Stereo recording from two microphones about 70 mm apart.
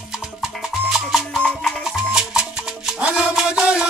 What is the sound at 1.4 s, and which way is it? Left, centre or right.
Music, centre.